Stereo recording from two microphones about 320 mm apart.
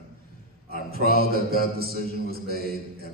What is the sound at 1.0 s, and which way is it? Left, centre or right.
Mantra, left.